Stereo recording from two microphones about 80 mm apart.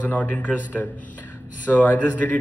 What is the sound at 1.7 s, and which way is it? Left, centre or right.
Speech, left.